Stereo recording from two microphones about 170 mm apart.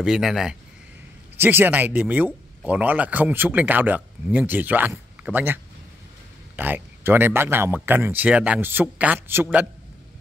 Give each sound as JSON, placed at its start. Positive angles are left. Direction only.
{"t": 0.0, "sound": "speech", "side_deg": -5}